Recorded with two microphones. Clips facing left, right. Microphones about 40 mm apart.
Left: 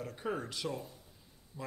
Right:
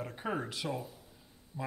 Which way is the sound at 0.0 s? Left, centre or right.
Centre.